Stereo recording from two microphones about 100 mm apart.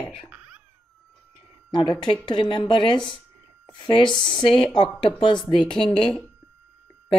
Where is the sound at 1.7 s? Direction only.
50° left (ahead or behind).